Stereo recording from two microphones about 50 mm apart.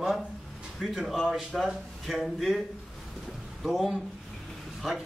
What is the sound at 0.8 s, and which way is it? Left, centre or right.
A man's voice, centre.